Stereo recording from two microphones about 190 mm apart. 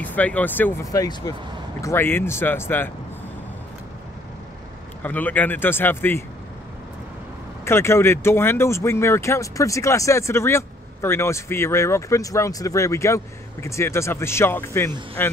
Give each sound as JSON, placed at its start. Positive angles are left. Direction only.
{"t": 0.0, "sound": "speech", "side_deg": 10}
{"t": 5.0, "sound": "speech", "side_deg": 10}
{"t": 7.6, "sound": "speech", "side_deg": 15}